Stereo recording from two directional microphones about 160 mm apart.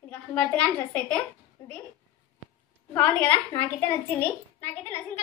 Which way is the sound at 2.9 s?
15° left (ahead or behind).